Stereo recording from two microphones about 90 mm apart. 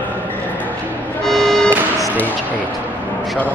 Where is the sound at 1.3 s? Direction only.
5° left (ahead or behind).